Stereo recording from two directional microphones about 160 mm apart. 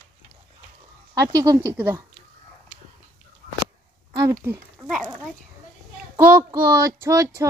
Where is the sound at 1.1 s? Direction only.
20° right (ahead or behind).